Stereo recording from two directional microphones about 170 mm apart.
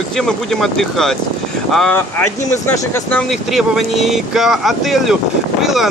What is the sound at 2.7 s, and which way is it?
Speech, 15° left (ahead or behind).